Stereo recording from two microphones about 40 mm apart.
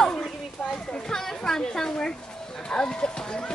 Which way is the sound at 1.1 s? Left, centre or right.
Centre.